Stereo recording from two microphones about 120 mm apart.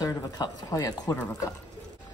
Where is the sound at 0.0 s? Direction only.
30° left (ahead or behind).